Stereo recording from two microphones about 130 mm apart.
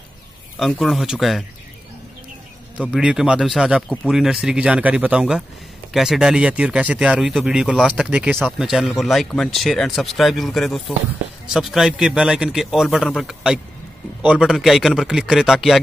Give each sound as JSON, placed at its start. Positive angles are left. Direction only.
{"t": 0.6, "sound": "speech", "side_deg": 0}
{"t": 2.9, "sound": "speech", "side_deg": -5}